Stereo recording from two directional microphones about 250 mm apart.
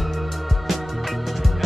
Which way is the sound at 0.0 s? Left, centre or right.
Centre.